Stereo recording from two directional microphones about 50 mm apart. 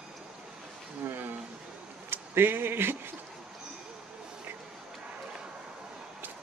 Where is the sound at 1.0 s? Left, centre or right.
Right.